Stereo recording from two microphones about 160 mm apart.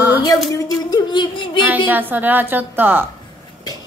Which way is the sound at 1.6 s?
10° right (ahead or behind).